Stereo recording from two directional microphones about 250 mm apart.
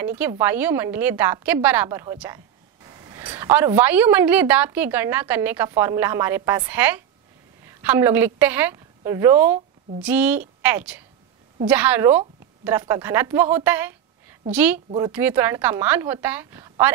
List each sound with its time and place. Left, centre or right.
0.0 s a woman's voice: centre
14.9 s speech: right
15.1 s a woman's voice: centre